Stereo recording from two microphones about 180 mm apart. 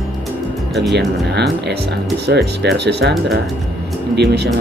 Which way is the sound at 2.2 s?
70° right (ahead or behind).